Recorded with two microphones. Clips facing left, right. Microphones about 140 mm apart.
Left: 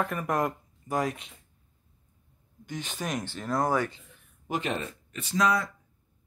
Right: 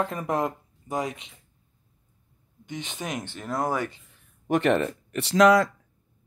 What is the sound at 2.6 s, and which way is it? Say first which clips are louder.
Speech: even; 20° right (ahead or behind).